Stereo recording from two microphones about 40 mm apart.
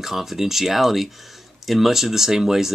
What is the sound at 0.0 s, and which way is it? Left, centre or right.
Speech, centre.